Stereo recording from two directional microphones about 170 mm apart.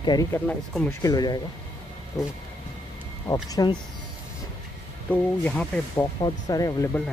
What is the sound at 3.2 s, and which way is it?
Speech, 20° left (ahead or behind).